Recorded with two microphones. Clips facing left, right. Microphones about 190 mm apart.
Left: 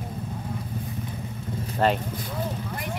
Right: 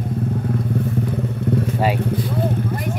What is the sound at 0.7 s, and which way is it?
Vehicle, 70° right (ahead or behind).